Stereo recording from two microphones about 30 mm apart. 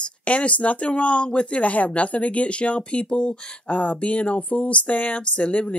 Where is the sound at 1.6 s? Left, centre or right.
Left.